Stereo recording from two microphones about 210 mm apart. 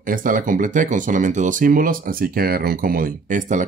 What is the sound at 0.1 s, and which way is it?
Speech, 40° right (ahead or behind).